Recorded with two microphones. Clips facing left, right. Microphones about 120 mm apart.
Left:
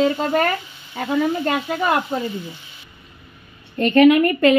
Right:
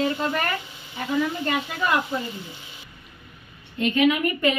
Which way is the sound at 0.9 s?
50° left (ahead or behind).